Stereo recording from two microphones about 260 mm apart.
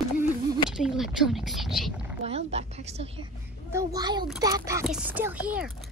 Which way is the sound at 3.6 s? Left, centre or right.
Centre.